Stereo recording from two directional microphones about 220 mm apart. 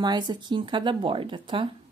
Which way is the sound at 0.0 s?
20° right (ahead or behind).